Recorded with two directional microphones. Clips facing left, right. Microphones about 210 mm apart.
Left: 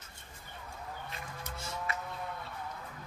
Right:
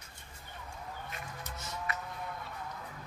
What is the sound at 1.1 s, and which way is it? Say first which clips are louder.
Music: even; 30° left (ahead or behind).